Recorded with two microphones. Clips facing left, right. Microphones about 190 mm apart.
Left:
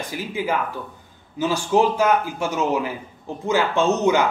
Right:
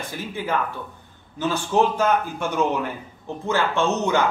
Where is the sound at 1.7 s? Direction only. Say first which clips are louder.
Left 2 dB; 10° left (ahead or behind).